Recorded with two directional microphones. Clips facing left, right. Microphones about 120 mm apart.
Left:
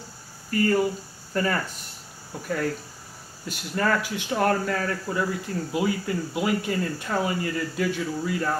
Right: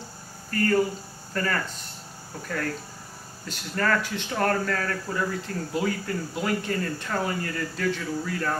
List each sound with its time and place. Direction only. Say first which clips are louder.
0.5 s speech: left 1 dB; 10° left (ahead or behind)